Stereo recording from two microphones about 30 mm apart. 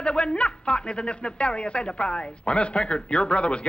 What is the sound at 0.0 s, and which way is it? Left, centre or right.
A man's voice, left.